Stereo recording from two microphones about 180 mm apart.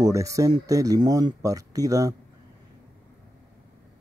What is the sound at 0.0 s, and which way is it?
Speech, 20° right (ahead or behind).